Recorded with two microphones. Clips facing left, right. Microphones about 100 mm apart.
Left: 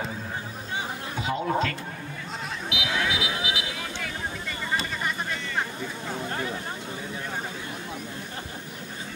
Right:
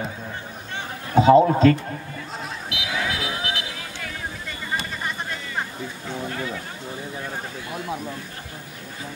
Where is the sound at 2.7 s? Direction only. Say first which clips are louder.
Even; centre (ahead or behind).